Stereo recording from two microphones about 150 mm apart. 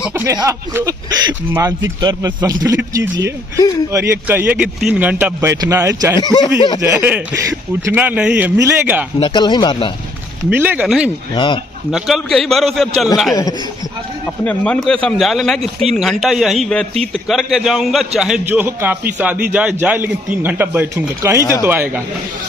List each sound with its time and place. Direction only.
0.1 s a man's voice: 20° right (ahead or behind)
6.1 s speech: 30° left (ahead or behind)
6.8 s a man's voice: 15° right (ahead or behind)
9.2 s speech: 30° left (ahead or behind)
10.5 s a man's voice: 10° right (ahead or behind)
11.3 s speech: 35° left (ahead or behind)
11.9 s speech: centre (ahead or behind)
14.4 s a man's voice: 10° left (ahead or behind); by 22.0 s 10° right (ahead or behind)